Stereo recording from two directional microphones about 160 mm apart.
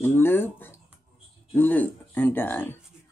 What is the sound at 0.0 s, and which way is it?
Speech, 15° left (ahead or behind).